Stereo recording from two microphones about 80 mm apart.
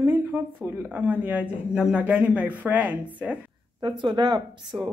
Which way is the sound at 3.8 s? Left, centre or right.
Right.